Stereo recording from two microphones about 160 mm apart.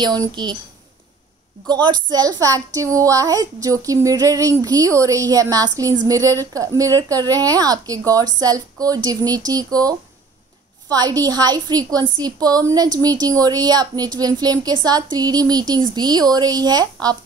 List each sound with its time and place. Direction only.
0.0 s a woman's voice: 25° right (ahead or behind)
1.7 s a woman's voice: 25° right (ahead or behind)